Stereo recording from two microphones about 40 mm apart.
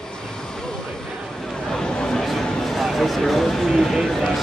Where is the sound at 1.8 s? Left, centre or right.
Centre.